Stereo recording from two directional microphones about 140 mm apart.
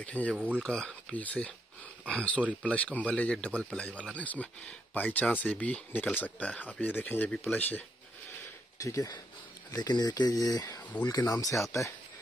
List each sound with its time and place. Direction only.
0.0 s speech: 10° left (ahead or behind)
8.8 s speech: 25° left (ahead or behind)